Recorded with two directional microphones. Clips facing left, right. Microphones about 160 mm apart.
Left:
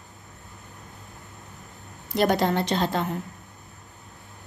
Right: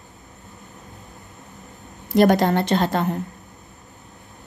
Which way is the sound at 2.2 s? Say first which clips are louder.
Right 6 dB; 50° right (ahead or behind).